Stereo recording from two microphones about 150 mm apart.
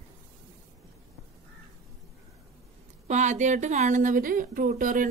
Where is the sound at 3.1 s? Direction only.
55° right (ahead or behind).